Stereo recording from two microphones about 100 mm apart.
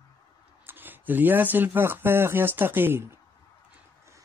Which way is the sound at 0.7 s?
20° right (ahead or behind).